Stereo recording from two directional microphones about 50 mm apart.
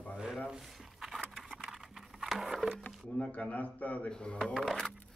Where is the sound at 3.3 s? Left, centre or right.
Left.